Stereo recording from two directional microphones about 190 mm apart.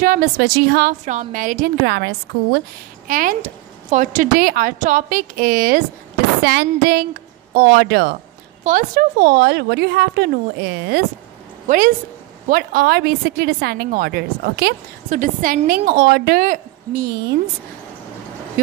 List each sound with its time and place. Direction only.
0.0 s a woman's voice: 50° right (ahead or behind)
1.0 s a woman's voice: 40° right (ahead or behind); by 2.6 s 65° right (ahead or behind)
3.1 s a woman's voice: 45° right (ahead or behind)
6.4 s a woman's voice: 65° right (ahead or behind)
8.6 s a woman's voice: 50° right (ahead or behind)
11.6 s a woman's voice: 45° right (ahead or behind)
15.0 s a woman's voice: 40° right (ahead or behind)